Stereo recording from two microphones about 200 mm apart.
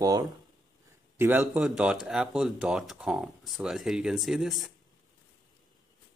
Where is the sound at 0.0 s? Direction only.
20° right (ahead or behind); by 4.6 s centre (ahead or behind).